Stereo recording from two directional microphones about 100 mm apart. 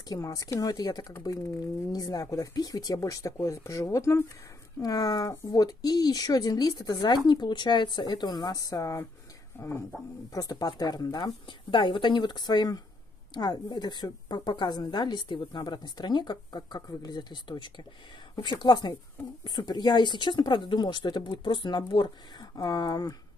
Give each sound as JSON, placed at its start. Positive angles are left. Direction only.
{"t": 0.1, "sound": "a woman's voice", "side_deg": 40}
{"t": 9.6, "sound": "speech", "side_deg": 25}
{"t": 10.3, "sound": "speech", "side_deg": 35}
{"t": 11.7, "sound": "a woman's voice", "side_deg": 50}